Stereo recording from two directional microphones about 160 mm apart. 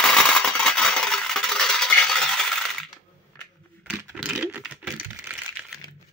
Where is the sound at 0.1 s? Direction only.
5° left (ahead or behind).